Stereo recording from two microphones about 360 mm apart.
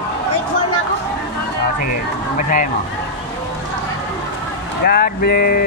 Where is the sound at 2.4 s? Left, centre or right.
Left.